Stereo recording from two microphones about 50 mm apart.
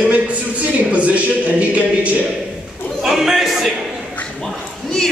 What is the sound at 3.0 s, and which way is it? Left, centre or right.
Speech, centre.